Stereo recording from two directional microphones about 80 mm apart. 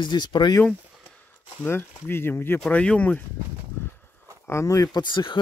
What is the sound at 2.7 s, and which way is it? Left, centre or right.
Speech, centre.